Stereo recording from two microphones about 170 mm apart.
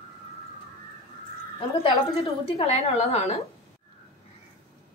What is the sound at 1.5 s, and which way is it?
A woman's voice, 35° left (ahead or behind).